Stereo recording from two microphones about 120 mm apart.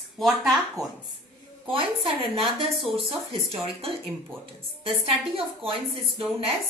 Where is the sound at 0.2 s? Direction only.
Centre (ahead or behind).